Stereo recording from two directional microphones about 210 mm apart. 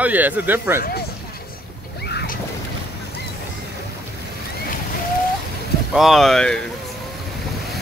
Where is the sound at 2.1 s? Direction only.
50° left (ahead or behind).